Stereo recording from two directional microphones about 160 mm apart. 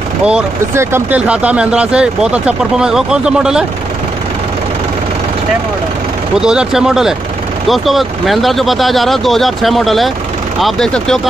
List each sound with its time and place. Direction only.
0.2 s speech: 5° right (ahead or behind)
6.4 s speech: 5° right (ahead or behind)